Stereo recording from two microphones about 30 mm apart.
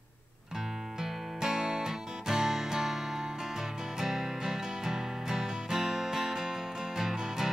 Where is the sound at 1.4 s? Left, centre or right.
Right.